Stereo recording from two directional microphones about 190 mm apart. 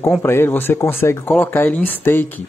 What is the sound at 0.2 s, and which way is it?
Speech, 10° left (ahead or behind).